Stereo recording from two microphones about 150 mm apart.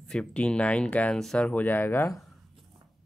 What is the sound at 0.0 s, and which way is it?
Speech, 5° left (ahead or behind).